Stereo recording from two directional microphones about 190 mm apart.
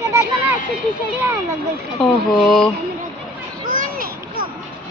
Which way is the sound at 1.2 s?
15° right (ahead or behind).